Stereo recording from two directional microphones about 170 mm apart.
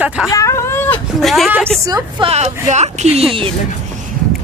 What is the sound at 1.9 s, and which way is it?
Speech, 20° right (ahead or behind).